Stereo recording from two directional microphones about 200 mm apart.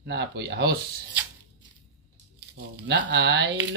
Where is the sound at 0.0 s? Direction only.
55° right (ahead or behind).